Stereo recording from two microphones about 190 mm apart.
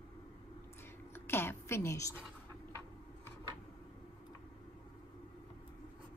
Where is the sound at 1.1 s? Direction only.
10° left (ahead or behind).